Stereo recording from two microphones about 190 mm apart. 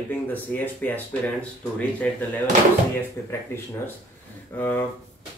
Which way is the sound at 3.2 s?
15° left (ahead or behind).